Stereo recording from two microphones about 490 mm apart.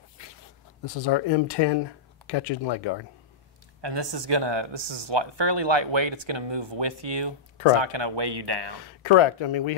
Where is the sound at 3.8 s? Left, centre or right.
Right.